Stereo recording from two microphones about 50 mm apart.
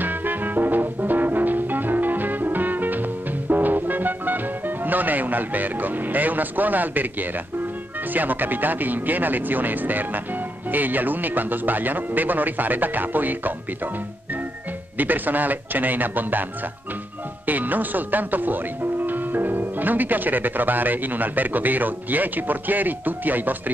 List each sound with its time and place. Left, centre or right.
0.0 s music: right
8.1 s speech: right
15.0 s speech: right
17.5 s speech: right